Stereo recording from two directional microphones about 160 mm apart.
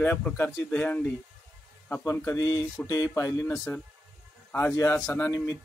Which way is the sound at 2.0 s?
20° left (ahead or behind).